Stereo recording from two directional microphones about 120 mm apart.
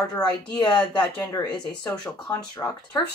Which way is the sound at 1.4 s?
30° left (ahead or behind).